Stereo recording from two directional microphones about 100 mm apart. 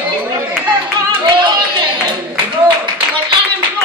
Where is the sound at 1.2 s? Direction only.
50° right (ahead or behind).